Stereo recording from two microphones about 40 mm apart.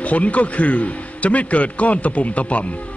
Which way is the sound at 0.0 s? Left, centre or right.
Left.